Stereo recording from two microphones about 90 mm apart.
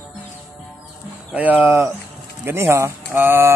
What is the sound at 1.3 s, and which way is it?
Speech, 20° right (ahead or behind).